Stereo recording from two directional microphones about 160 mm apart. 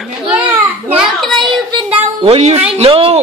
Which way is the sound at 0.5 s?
10° right (ahead or behind).